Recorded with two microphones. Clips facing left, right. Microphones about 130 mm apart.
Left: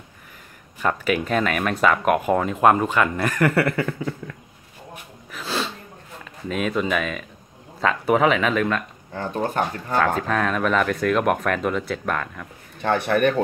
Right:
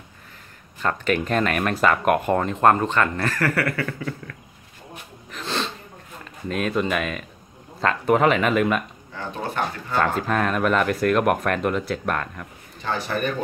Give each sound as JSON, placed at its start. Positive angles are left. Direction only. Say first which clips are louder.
{"t": 0.7, "sound": "speech", "louder": "left 1 dB", "side_deg": 10}
{"t": 5.3, "sound": "a sound", "louder": "left 1 dB", "side_deg": 5}
{"t": 6.5, "sound": "speech", "louder": "even", "side_deg": 0}
{"t": 9.1, "sound": "speech", "louder": "left 4 dB", "side_deg": 45}
{"t": 9.9, "sound": "speech", "louder": "left 1 dB", "side_deg": 0}
{"t": 12.8, "sound": "a man's voice", "louder": "left 6 dB", "side_deg": 60}